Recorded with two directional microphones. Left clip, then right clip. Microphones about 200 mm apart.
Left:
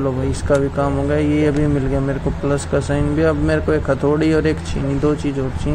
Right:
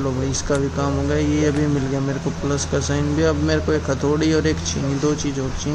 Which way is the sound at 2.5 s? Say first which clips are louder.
Left 3 dB; 5° right (ahead or behind).